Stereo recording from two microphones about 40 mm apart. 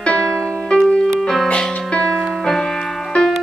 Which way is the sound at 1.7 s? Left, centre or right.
Left.